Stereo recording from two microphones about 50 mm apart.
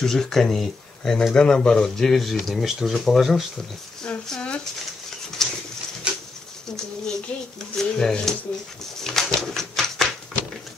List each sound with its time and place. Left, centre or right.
0.0 s speech: centre
1.3 s speech: centre
3.5 s speech: centre
5.4 s a sound: centre
6.1 s bird: right
7.7 s speech: centre
9.0 s a sound: centre